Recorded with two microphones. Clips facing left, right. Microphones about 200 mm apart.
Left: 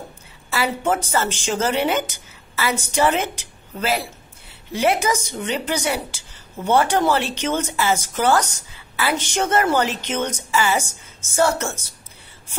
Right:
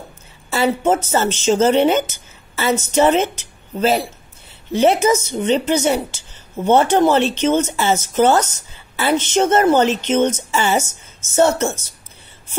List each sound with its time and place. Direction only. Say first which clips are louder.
0.5 s a woman's voice: right 5 dB; 25° right (ahead or behind)